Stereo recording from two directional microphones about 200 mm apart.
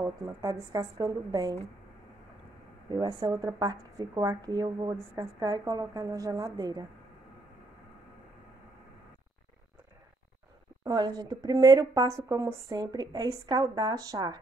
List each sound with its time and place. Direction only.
0.7 s speech: 15° right (ahead or behind)
2.9 s speech: 20° right (ahead or behind)
10.8 s speech: 20° right (ahead or behind)